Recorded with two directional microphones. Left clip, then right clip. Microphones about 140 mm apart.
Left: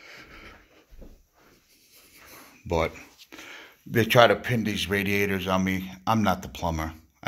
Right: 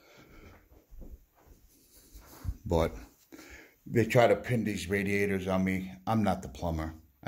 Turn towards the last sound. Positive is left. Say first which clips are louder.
# left 6 dB
turn(degrees=-10)  # may be behind; listen again after turning